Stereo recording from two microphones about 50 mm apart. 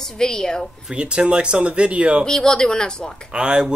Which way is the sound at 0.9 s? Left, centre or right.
Centre.